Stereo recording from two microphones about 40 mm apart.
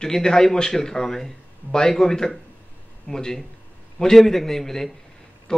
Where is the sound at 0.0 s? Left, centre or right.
Centre.